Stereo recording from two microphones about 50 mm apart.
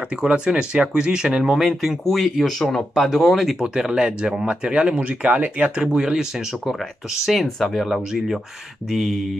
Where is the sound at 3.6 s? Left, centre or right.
Centre.